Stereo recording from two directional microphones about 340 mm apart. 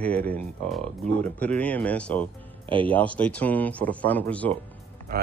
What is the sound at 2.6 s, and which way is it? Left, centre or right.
Music, centre.